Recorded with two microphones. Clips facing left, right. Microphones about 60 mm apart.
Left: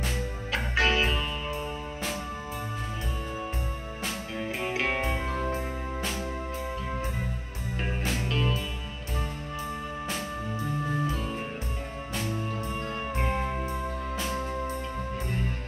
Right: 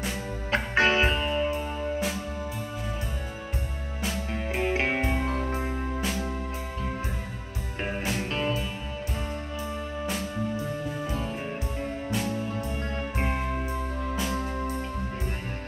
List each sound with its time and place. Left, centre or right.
0.5 s music: right
4.3 s music: right
5.4 s music: centre
8.3 s music: right
13.2 s music: centre